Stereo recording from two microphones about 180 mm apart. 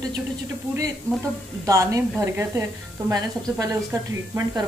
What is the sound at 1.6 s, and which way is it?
A woman's voice, 15° right (ahead or behind).